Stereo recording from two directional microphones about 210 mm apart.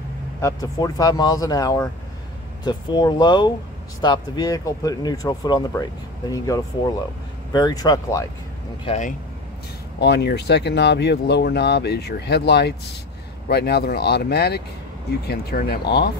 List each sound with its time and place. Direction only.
0.4 s speech: 15° left (ahead or behind)
8.8 s speech: 35° left (ahead or behind)
9.9 s speech: 55° left (ahead or behind)